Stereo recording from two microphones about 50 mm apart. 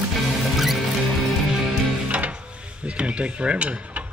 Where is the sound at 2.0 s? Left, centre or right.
Right.